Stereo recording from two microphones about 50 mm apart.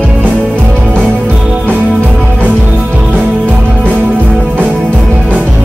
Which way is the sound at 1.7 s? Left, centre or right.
Right.